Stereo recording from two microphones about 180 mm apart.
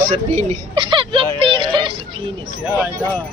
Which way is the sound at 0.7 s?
25° right (ahead or behind).